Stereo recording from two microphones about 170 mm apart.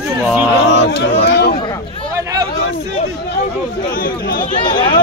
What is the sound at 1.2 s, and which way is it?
Speech, 70° left (ahead or behind).